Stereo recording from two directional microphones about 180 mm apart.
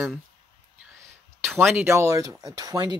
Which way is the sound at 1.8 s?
15° right (ahead or behind).